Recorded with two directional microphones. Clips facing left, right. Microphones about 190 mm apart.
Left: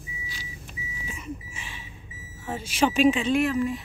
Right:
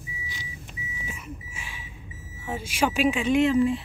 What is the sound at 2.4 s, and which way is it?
Speech, 10° right (ahead or behind).